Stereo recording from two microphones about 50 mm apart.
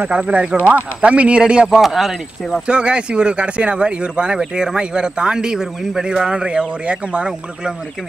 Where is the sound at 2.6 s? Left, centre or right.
Centre.